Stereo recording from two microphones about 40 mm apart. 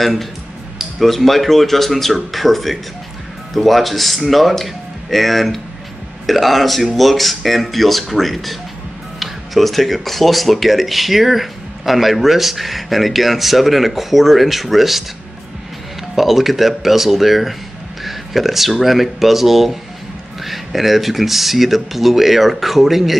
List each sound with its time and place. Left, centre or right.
0.0 s speech: centre
16.2 s speech: centre